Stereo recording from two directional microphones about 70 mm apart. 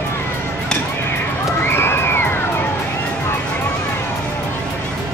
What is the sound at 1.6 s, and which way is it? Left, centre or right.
Crowd, left.